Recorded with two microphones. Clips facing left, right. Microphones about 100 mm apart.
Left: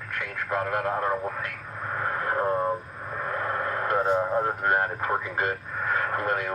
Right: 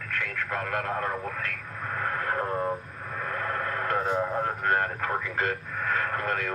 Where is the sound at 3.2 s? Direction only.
20° left (ahead or behind).